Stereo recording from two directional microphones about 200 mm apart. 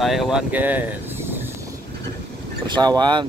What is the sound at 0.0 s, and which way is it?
Speech, centre (ahead or behind).